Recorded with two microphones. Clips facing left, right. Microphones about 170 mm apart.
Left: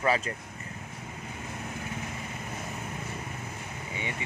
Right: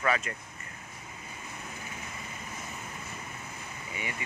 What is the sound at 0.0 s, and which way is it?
Speech, 30° left (ahead or behind).